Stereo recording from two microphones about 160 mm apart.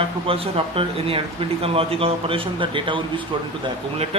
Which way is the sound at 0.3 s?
35° right (ahead or behind).